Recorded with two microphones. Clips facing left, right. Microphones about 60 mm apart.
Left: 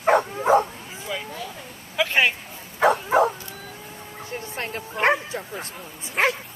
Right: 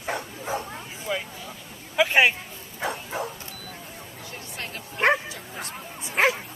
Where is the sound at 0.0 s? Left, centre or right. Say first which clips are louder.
Left 12 dB; left.